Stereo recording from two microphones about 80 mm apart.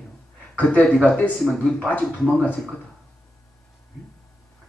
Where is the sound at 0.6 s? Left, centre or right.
Centre.